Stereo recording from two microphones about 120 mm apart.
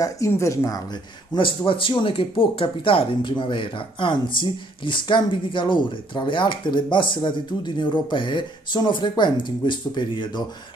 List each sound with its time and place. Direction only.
0.0 s speech: 25° left (ahead or behind)
1.3 s speech: 40° left (ahead or behind)